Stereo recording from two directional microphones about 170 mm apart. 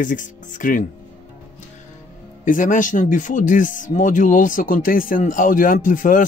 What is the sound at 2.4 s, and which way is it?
Speech, 50° left (ahead or behind).